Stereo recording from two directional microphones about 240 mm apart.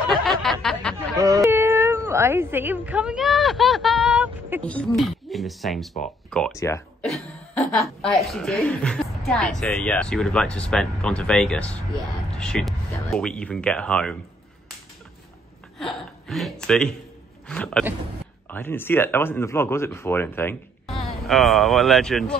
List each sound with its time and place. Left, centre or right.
0.2 s snicker: centre
1.1 s a woman's voice: centre
8.1 s a woman's voice: centre
15.8 s a woman's voice: centre
20.9 s a sound: left
21.2 s a woman's voice: centre